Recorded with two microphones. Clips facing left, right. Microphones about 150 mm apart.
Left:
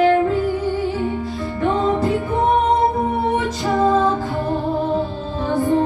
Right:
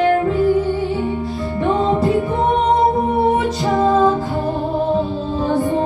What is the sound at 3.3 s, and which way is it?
Music, 20° right (ahead or behind).